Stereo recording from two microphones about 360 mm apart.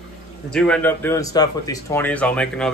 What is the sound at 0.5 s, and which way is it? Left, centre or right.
A man's voice, centre.